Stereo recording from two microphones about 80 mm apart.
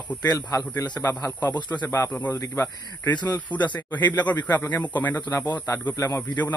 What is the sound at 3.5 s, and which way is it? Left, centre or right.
A man's voice, centre.